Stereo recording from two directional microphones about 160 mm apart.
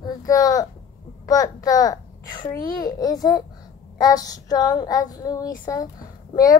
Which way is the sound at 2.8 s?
25° left (ahead or behind).